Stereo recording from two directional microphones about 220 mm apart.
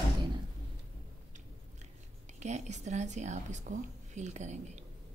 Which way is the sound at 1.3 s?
30° right (ahead or behind).